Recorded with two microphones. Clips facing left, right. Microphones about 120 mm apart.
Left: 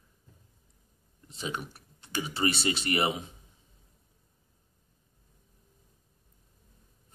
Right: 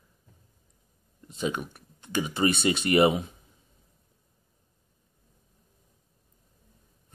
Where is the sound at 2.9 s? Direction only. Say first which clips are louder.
Right 9 dB; 25° right (ahead or behind).